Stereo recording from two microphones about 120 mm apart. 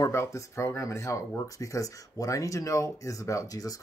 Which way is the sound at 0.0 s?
25° left (ahead or behind).